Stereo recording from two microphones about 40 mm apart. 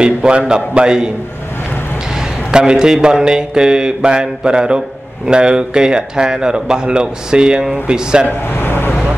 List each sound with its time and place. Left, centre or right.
0.0 s mantra: right
2.5 s mantra: centre
8.3 s speech: left